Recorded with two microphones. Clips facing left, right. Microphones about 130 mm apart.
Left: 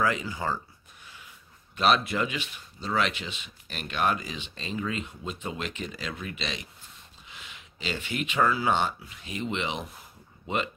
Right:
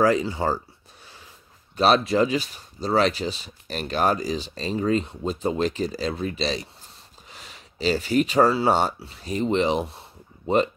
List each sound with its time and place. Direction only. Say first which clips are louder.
0.0 s speech: right 7 dB; 35° right (ahead or behind)
1.0 s snort: right 1 dB; 35° right (ahead or behind)
1.8 s speech: right 6 dB; 35° right (ahead or behind)